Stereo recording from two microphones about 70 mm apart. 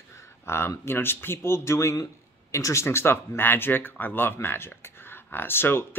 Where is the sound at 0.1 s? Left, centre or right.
Left.